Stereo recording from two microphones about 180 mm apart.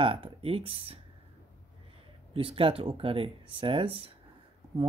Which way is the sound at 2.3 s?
30° right (ahead or behind).